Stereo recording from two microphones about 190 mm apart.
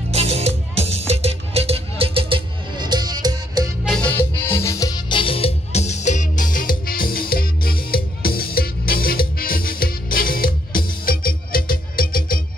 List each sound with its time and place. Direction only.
0.1 s music: 35° right (ahead or behind)
3.8 s music: 5° left (ahead or behind); by 12.4 s 50° left (ahead or behind)